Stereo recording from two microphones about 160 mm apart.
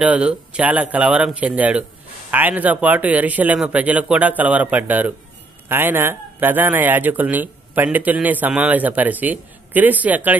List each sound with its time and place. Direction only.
0.0 s a man's voice: 10° right (ahead or behind)